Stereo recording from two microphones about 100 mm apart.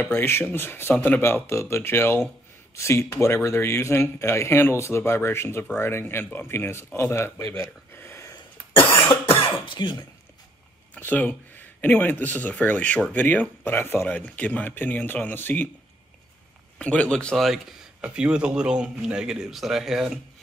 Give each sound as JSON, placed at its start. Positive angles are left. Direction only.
{"t": 0.0, "sound": "a man's voice", "side_deg": 25}
{"t": 7.5, "sound": "a sound", "side_deg": 25}
{"t": 9.1, "sound": "cough", "side_deg": 60}
{"t": 9.8, "sound": "speech", "side_deg": 50}
{"t": 11.0, "sound": "speech", "side_deg": 15}
{"t": 16.7, "sound": "speech", "side_deg": 10}